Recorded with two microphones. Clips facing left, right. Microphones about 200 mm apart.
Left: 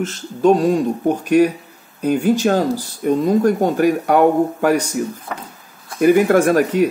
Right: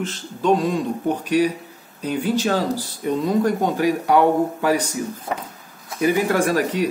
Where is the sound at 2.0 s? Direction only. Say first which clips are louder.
Left 6 dB; 50° left (ahead or behind).